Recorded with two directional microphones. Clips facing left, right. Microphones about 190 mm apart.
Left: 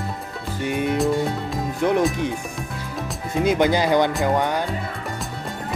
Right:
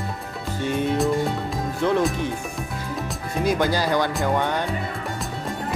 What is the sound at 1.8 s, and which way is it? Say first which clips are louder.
Music: left 1 dB; 15° left (ahead or behind).